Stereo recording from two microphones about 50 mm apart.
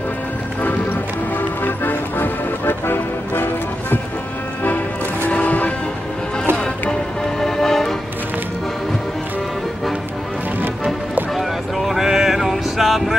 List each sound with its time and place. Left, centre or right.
1.6 s music: left
5.3 s music: left
6.5 s music: centre
11.3 s a sound: centre